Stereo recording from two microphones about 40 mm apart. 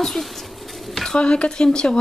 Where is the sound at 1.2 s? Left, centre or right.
Left.